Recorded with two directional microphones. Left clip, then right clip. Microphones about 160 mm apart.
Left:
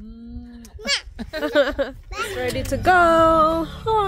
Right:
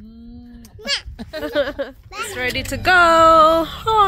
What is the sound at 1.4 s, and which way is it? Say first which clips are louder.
Speech: left 2 dB; 30° left (ahead or behind).